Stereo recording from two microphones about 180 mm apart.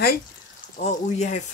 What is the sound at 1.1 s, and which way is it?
Speech, 40° left (ahead or behind).